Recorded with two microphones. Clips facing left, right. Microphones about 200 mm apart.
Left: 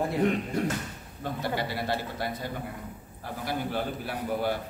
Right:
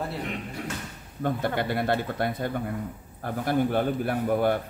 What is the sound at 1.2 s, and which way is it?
A man's voice, 55° right (ahead or behind).